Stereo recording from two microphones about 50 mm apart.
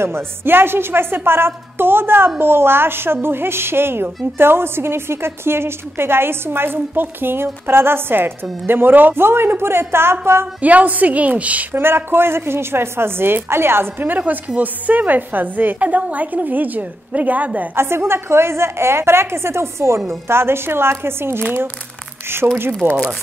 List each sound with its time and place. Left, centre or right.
0.0 s a woman's voice: right
10.6 s a woman's voice: right
11.7 s a woman's voice: right
17.7 s a woman's voice: right
22.8 s a woman's voice: right